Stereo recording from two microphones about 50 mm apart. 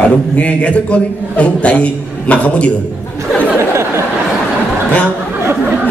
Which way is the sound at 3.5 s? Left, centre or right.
Right.